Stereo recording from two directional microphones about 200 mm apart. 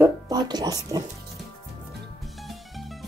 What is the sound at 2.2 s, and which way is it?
Music, centre (ahead or behind).